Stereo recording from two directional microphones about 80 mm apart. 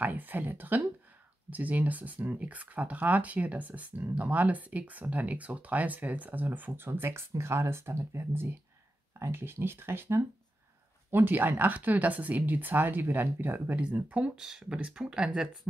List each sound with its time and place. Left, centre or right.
0.0 s speech: right